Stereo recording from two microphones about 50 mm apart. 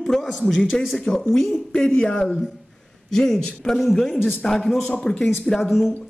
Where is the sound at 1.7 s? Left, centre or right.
Centre.